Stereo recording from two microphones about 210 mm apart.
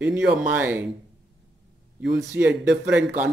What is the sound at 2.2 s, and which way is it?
Speech, 10° right (ahead or behind).